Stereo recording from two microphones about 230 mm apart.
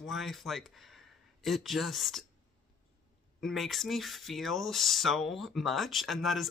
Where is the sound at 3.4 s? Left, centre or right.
Centre.